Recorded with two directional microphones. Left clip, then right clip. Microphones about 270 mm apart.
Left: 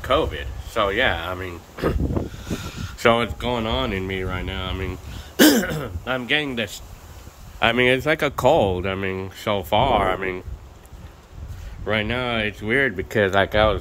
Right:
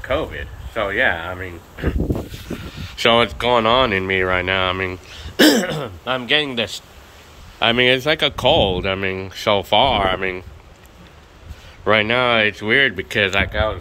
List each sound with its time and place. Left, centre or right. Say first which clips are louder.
0.0 s speech: left 1 dB; centre
3.0 s speech: right 4 dB; centre
11.8 s speech: right 8 dB; centre
13.5 s speech: left 3 dB; left